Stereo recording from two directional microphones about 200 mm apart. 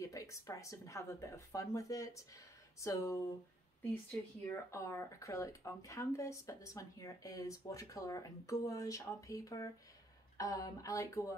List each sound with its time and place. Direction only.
0.0 s speech: 15° left (ahead or behind)
4.5 s speech: 15° left (ahead or behind)